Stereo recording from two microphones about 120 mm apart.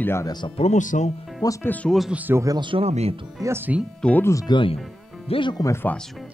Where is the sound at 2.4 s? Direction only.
35° right (ahead or behind).